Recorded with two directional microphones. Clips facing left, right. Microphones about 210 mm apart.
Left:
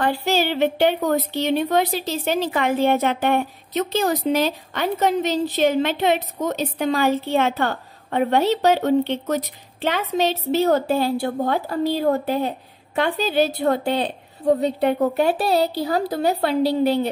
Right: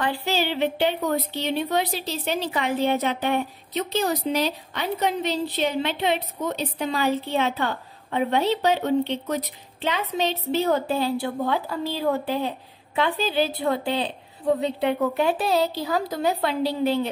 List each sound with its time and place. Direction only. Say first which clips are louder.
0.0 s a woman's voice: left 4 dB; 45° left (ahead or behind)
10.4 s a woman's voice: left 3 dB; 45° left (ahead or behind)